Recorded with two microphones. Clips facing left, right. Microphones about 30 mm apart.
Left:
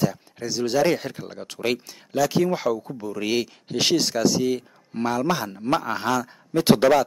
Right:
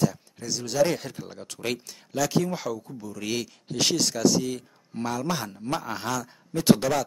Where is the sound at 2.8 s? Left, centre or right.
Left.